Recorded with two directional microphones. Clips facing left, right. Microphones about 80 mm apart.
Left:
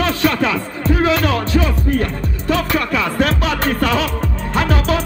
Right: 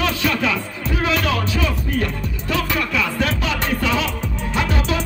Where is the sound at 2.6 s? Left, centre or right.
Left.